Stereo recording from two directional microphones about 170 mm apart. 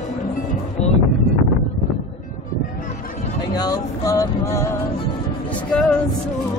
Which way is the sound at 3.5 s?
20° left (ahead or behind).